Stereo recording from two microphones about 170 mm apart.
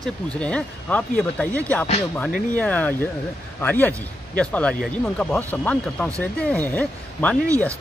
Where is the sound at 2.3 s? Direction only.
55° left (ahead or behind).